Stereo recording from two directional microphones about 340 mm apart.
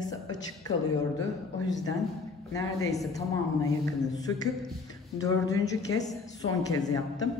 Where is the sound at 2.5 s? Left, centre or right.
Centre.